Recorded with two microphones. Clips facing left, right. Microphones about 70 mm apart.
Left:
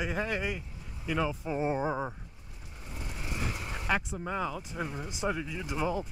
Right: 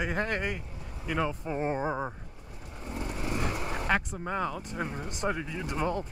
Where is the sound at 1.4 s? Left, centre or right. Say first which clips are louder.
Even; right.